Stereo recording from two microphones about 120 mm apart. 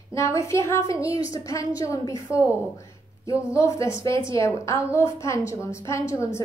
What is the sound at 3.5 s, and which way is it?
A woman's voice, 25° left (ahead or behind).